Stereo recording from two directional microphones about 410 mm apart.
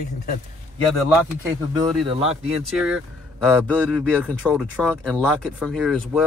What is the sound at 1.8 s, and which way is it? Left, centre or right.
Speech, centre.